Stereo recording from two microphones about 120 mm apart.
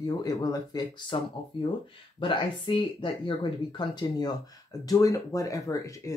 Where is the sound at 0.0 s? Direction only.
35° left (ahead or behind).